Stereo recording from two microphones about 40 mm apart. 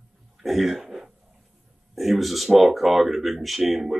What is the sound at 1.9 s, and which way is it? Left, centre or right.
Speech, centre.